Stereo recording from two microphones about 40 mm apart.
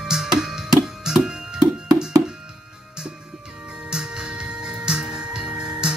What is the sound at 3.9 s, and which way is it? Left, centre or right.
Music, right.